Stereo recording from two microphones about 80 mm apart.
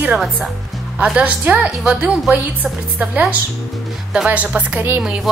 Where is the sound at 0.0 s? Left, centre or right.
Centre.